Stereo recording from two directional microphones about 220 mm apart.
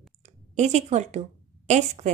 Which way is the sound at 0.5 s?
30° right (ahead or behind).